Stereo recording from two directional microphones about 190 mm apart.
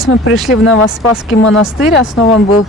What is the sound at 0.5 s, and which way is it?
Speech, 90° left.